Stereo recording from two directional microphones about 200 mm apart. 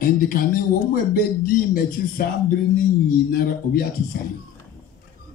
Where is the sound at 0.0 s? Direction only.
45° left (ahead or behind).